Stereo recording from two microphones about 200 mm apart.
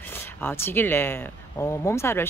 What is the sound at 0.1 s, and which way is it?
Speech, 10° left (ahead or behind).